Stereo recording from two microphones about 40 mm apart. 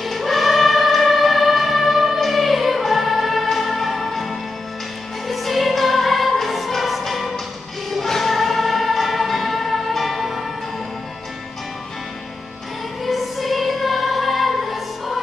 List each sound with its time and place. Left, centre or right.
0.0 s choir: centre
2.1 s music: centre
13.0 s music: centre